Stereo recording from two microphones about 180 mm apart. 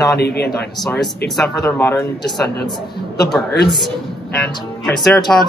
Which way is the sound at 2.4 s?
65° left (ahead or behind).